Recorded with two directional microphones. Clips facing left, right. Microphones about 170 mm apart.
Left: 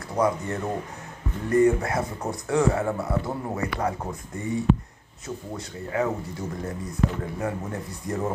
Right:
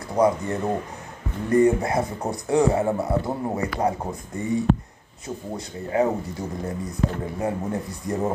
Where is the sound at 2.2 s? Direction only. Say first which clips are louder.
Right 2 dB; 20° right (ahead or behind).